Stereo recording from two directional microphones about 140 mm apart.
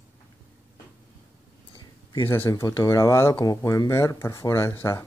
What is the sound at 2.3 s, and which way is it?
Speech, 20° left (ahead or behind).